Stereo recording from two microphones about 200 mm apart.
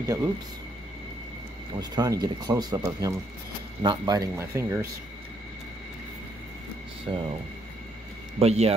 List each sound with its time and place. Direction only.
0.0 s speech: 15° right (ahead or behind)
1.8 s speech: 20° right (ahead or behind)
7.1 s speech: 20° right (ahead or behind)
8.4 s speech: 30° right (ahead or behind)